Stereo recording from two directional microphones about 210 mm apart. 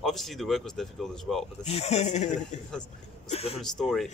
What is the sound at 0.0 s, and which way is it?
Speech, centre (ahead or behind).